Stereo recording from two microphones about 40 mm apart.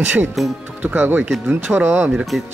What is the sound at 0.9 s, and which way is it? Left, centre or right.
Speech, right.